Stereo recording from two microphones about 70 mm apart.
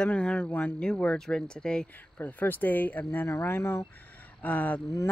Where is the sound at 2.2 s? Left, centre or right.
Left.